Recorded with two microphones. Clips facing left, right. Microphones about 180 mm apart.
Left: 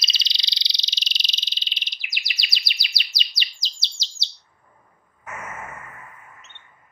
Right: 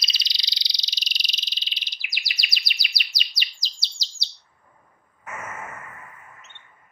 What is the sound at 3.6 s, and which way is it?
Chirp, 25° left (ahead or behind).